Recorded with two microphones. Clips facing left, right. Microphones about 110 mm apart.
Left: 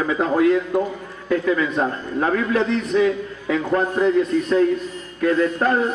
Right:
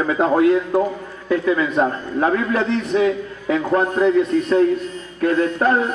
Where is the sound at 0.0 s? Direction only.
40° right (ahead or behind).